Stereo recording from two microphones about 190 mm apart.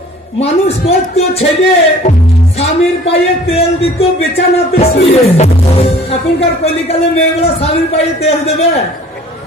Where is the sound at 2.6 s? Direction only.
30° left (ahead or behind).